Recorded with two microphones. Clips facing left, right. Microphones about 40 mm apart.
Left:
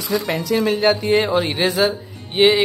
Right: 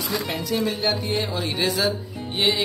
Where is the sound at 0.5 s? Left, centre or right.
Left.